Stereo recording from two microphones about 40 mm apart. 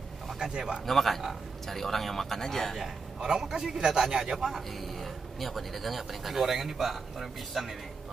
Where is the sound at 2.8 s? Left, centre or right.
Centre.